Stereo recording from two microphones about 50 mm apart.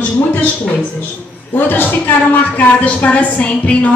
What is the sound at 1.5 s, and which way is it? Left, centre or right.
A woman's voice, left.